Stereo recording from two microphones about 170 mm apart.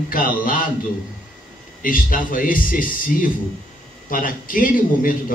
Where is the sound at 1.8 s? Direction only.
55° left (ahead or behind).